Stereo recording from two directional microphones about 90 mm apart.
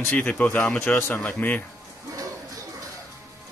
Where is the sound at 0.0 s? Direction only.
15° left (ahead or behind).